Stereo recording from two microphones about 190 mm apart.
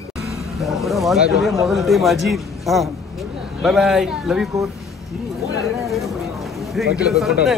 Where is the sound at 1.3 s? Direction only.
Centre (ahead or behind).